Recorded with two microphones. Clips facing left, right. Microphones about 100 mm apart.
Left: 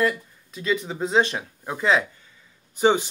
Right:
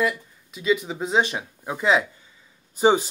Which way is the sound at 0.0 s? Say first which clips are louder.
Left 1 dB; 10° right (ahead or behind).